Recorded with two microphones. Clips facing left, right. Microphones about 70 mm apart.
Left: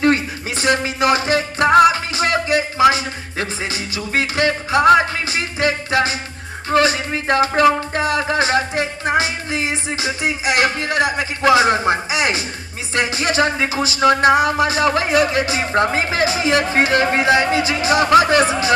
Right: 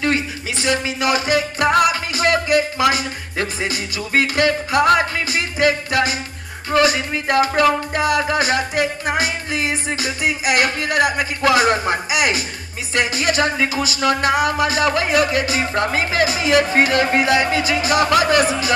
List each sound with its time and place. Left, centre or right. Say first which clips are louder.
0.0 s speech: left 4 dB; left
1.7 s music: left 6 dB; left
6.7 s speech: even; left